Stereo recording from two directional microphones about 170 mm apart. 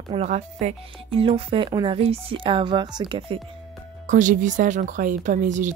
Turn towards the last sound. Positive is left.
turn(degrees=-45)  # may be behind; listen again after turning